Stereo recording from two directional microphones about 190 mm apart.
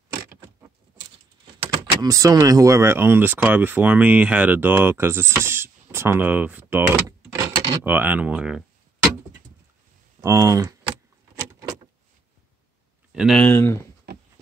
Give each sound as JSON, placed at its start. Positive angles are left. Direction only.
{"t": 0.3, "sound": "mechanisms", "side_deg": -10}
{"t": 2.0, "sound": "speech", "side_deg": -20}
{"t": 7.9, "sound": "speech", "side_deg": -10}
{"t": 10.2, "sound": "speech", "side_deg": -15}
{"t": 13.1, "sound": "speech", "side_deg": -5}
{"t": 13.4, "sound": "speech", "side_deg": 15}